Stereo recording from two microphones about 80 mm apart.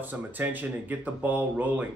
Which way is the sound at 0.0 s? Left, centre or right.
Right.